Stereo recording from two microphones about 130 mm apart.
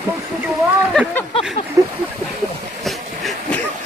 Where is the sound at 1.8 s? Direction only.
25° right (ahead or behind).